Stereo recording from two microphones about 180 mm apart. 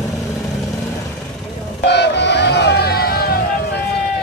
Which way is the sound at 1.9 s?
70° left (ahead or behind).